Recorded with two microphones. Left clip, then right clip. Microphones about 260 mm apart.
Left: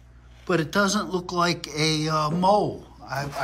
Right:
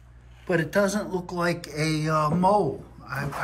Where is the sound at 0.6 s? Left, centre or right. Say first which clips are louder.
Even; left.